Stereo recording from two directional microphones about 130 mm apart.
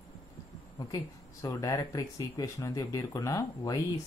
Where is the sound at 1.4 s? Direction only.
30° left (ahead or behind).